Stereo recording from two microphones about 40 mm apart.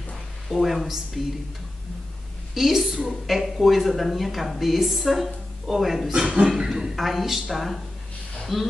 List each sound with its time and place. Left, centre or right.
0.5 s a woman's voice: centre
2.5 s a woman's voice: centre